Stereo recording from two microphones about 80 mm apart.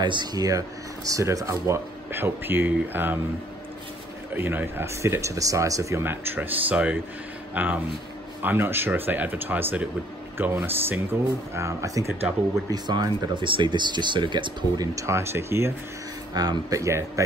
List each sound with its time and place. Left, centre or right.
0.0 s speech: right
2.1 s speech: right
4.4 s speech: right
6.0 s speech: right
12.7 s speech: right
15.0 s speech: right
16.3 s speech: right
16.8 s speech: right